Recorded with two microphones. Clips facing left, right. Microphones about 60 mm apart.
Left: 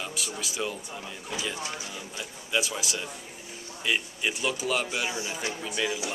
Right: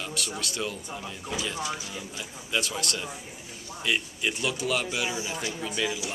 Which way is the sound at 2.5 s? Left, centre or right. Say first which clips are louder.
Even; centre.